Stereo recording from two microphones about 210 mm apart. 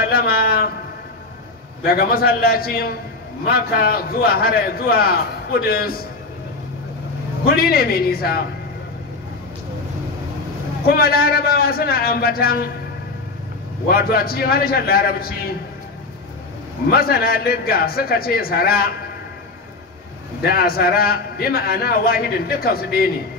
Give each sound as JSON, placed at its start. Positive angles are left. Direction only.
{"t": 0.0, "sound": "a sound", "side_deg": 45}
{"t": 1.9, "sound": "a man's voice", "side_deg": 45}
{"t": 7.4, "sound": "a man's voice", "side_deg": 45}
{"t": 10.9, "sound": "a man's voice", "side_deg": 45}
{"t": 13.8, "sound": "a man's voice", "side_deg": 45}
{"t": 16.9, "sound": "a man's voice", "side_deg": 45}
{"t": 20.4, "sound": "a man's voice", "side_deg": 45}